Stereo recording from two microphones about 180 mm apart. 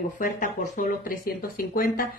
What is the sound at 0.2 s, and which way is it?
Speech, 45° left (ahead or behind).